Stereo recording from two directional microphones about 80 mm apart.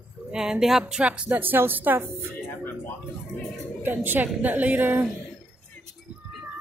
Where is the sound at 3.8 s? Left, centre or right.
Right.